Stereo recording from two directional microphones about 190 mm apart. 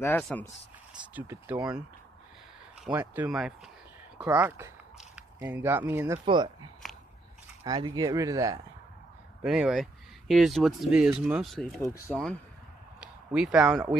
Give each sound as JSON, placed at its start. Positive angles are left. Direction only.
{"t": 0.2, "sound": "speech", "side_deg": 5}
{"t": 1.1, "sound": "speech", "side_deg": -10}
{"t": 3.0, "sound": "speech", "side_deg": -5}
{"t": 6.2, "sound": "speech", "side_deg": -25}
{"t": 9.4, "sound": "speech", "side_deg": -5}
{"t": 11.8, "sound": "speech", "side_deg": 15}
{"t": 13.0, "sound": "speech", "side_deg": -5}